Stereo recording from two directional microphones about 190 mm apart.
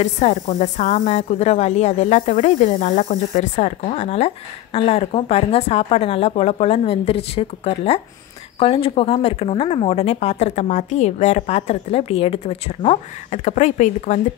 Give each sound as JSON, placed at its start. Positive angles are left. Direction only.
{"t": 0.0, "sound": "speech", "side_deg": 35}